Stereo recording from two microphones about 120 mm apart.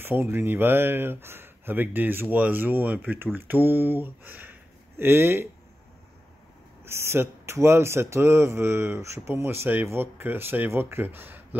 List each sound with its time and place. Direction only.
0.0 s speech: 20° right (ahead or behind)
6.8 s speech: 20° right (ahead or behind)